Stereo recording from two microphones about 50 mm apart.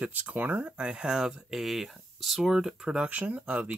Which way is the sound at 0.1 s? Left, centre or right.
Right.